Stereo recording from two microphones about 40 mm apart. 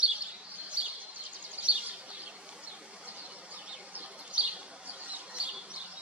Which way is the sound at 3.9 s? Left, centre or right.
Right.